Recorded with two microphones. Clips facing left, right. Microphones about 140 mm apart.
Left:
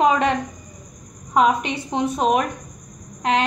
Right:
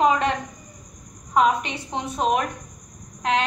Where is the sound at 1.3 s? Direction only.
15° left (ahead or behind).